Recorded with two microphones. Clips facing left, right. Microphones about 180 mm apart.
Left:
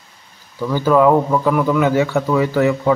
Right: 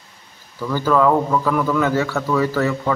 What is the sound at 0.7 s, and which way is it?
A man's voice, 15° left (ahead or behind).